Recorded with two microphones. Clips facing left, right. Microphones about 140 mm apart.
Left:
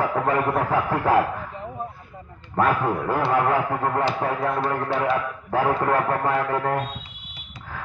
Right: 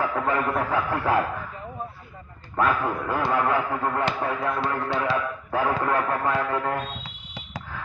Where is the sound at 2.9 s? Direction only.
25° left (ahead or behind).